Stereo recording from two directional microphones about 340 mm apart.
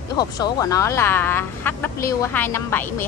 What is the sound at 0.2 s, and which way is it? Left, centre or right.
Speech, centre.